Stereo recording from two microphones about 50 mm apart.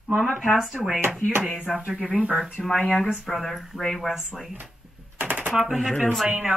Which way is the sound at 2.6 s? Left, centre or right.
Centre.